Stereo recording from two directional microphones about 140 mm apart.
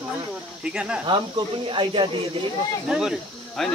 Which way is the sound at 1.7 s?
35° right (ahead or behind).